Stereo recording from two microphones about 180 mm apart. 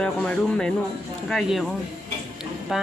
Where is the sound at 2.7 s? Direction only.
Centre (ahead or behind).